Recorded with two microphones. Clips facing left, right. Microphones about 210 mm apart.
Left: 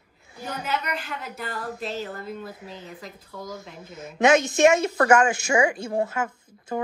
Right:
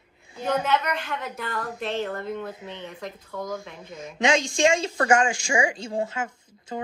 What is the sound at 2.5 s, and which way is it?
Speech, 25° right (ahead or behind).